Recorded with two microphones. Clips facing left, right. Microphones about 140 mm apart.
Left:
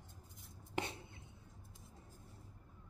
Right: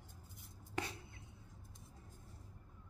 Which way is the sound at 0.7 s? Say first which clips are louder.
Left 2 dB; 25° left (ahead or behind).